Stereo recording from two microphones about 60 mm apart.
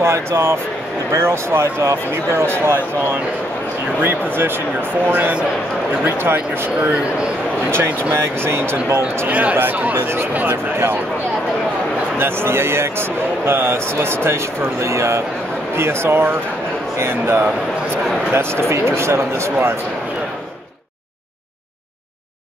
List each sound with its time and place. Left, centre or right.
0.0 s speech: right
2.6 s speech: right
9.3 s speech: right
9.9 s speech: right
10.3 s speech: right
12.2 s speech: right